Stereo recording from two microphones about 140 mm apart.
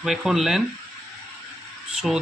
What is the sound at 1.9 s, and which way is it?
Speech, 5° right (ahead or behind).